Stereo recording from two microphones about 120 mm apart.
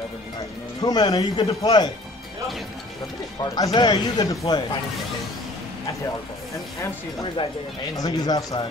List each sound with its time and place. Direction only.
0.8 s speech: 35° left (ahead or behind)
3.5 s speech: 35° left (ahead or behind)
7.9 s speech: 30° left (ahead or behind)